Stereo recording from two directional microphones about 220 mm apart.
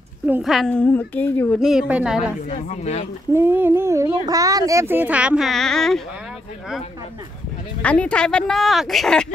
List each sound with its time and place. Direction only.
0.3 s a woman's voice: centre (ahead or behind)
2.5 s speech: 30° left (ahead or behind)
3.3 s speech: 10° right (ahead or behind)
7.8 s a woman's voice: 5° left (ahead or behind)